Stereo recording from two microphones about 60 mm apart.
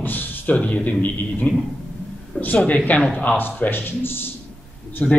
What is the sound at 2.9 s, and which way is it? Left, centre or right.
Speech, left.